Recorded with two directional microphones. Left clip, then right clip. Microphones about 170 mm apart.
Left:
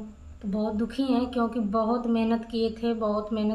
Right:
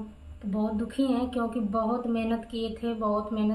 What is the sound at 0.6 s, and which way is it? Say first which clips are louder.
Speech: left 1 dB; 25° left (ahead or behind).